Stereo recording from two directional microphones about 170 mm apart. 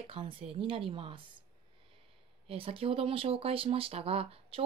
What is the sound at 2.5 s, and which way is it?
Speech, 35° right (ahead or behind).